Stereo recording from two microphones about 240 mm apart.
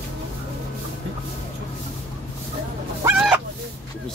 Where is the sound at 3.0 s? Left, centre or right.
Centre.